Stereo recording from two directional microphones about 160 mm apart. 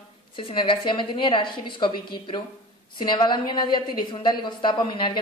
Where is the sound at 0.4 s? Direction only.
35° left (ahead or behind).